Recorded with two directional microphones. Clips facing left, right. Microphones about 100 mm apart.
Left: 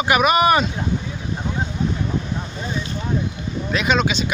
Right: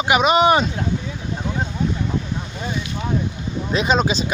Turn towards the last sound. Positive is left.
turn(degrees=-35)  # may be behind; listen again after turning